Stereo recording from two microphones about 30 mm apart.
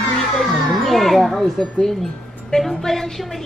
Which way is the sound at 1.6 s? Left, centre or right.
Centre.